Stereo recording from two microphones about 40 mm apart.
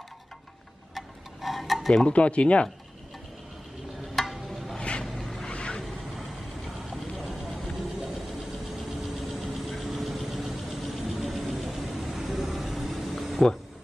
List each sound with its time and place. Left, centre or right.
0.9 s tick-tock: centre
2.0 s speech: left
4.1 s a sound: centre
4.7 s vehicle: left
5.0 s vehicle: centre
5.4 s a sound: left
6.9 s vehicle: centre
8.7 s vehicle: centre